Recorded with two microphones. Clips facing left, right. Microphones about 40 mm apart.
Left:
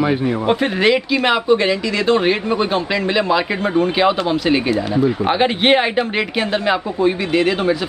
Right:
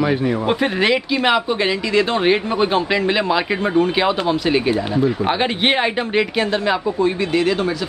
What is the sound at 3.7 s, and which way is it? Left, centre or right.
A man's voice, centre.